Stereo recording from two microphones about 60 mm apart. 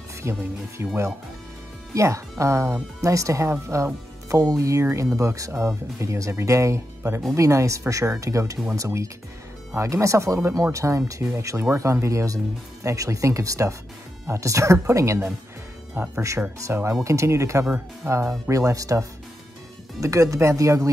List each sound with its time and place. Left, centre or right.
0.2 s speech: right
3.0 s speech: right
4.4 s speech: right
11.2 s speech: right
18.0 s speech: right
18.5 s speech: right